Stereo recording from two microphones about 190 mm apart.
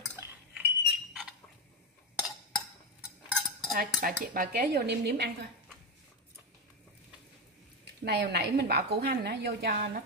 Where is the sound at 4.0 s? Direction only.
55° right (ahead or behind).